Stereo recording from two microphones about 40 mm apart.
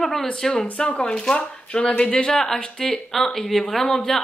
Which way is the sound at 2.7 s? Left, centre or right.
Centre.